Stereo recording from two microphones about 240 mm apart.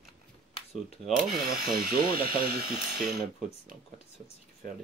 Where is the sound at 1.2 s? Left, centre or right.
Centre.